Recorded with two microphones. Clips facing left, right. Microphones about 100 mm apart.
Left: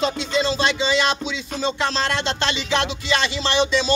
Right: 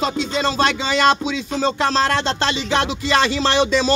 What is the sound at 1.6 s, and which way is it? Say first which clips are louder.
Speech: right 4 dB; 40° right (ahead or behind).